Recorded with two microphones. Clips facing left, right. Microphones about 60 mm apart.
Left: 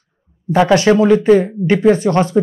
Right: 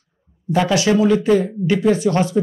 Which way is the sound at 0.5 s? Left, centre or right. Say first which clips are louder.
Left 5 dB; left.